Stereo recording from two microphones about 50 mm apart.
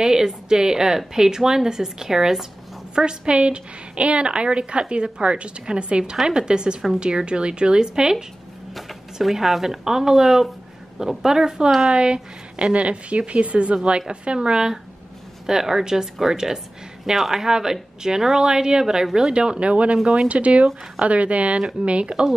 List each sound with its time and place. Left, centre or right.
0.0 s a woman's voice: centre
2.9 s a woman's voice: centre
8.7 s a woman's voice: centre